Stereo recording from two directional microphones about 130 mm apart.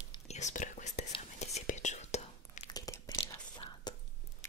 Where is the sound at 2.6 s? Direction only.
30° left (ahead or behind).